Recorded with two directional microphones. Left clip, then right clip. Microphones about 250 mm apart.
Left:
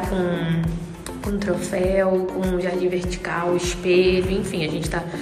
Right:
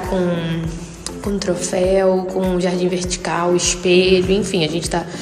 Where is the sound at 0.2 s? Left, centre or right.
Centre.